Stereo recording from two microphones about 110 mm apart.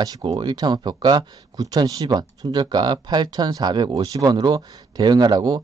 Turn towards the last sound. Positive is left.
turn(degrees=-40)  # may be behind; listen again after turning